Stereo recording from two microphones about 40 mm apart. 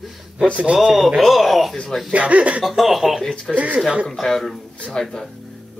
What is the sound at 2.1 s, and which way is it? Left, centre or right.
Speech, right.